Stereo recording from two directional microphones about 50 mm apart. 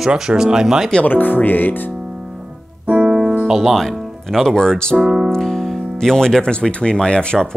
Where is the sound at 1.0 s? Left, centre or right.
Left.